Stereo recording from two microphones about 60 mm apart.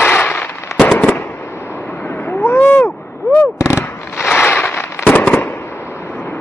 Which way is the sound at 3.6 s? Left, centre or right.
Left.